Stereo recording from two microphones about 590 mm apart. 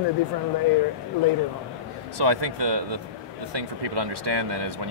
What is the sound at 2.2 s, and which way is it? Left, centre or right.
Speech, right.